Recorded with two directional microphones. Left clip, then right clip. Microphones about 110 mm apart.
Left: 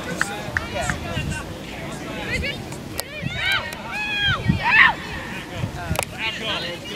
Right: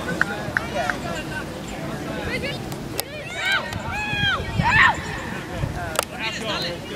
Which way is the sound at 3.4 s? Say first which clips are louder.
Even; centre (ahead or behind).